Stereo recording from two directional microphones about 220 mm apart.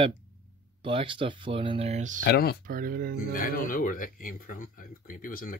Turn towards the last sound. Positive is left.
turn(degrees=40)  # may be behind; listen again after turning